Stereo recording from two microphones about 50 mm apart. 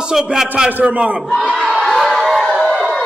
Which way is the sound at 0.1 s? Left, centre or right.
Centre.